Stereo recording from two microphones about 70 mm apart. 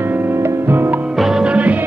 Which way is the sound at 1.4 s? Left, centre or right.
Centre.